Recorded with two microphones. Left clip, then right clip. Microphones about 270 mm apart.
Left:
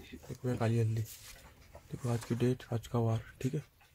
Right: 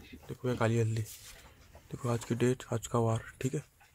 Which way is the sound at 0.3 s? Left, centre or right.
Right.